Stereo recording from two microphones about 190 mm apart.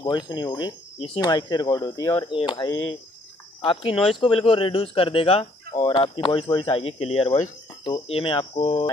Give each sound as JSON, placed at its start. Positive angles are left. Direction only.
{"t": 0.0, "sound": "speech", "side_deg": 20}
{"t": 3.9, "sound": "speech", "side_deg": 0}
{"t": 4.2, "sound": "speech", "side_deg": 30}